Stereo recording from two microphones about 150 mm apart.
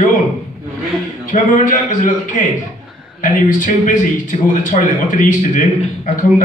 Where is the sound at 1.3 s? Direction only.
60° left (ahead or behind).